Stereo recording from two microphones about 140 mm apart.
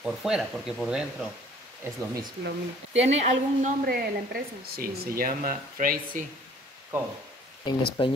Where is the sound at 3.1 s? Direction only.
55° right (ahead or behind).